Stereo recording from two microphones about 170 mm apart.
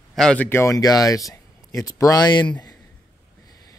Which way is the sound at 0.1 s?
5° left (ahead or behind).